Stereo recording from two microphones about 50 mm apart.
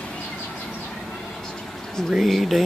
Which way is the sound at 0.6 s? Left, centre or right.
Left.